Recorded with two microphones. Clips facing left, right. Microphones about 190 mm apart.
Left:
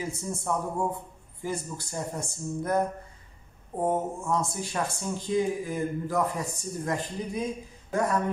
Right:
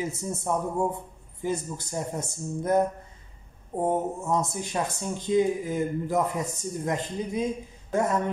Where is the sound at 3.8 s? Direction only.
20° right (ahead or behind).